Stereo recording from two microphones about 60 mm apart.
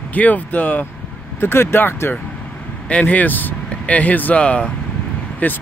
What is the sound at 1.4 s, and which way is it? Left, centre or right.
Speech, left.